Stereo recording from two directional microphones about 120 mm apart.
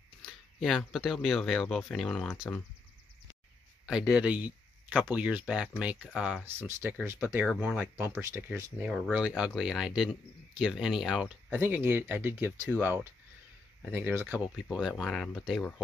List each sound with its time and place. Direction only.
0.2 s speech: centre (ahead or behind)
3.8 s speech: 5° right (ahead or behind)
8.8 s speech: 5° right (ahead or behind)
11.5 s speech: 20° right (ahead or behind)
14.5 s speech: 5° right (ahead or behind)